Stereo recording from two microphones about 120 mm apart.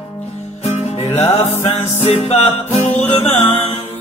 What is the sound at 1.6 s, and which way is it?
Music, 65° left (ahead or behind).